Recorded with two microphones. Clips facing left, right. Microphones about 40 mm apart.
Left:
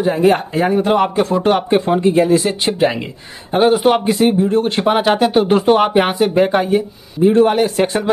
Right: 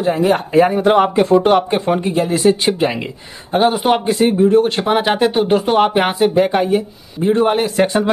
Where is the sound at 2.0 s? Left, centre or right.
Left.